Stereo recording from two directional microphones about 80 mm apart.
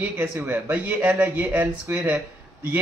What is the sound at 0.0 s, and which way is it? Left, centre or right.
A man's voice, right.